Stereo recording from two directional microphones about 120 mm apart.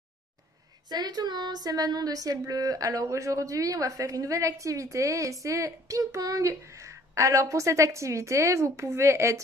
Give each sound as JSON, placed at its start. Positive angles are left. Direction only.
{"t": 0.8, "sound": "speech", "side_deg": -35}